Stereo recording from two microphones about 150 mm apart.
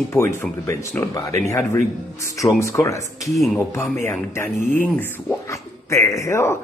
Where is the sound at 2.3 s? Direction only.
20° left (ahead or behind).